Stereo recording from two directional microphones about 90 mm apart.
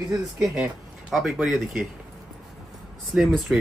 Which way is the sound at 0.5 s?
5° right (ahead or behind).